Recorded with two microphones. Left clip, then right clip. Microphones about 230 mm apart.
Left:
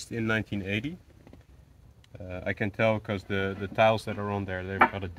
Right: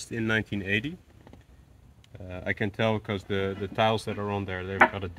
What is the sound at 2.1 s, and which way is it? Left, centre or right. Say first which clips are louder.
Speech: right 1 dB; centre.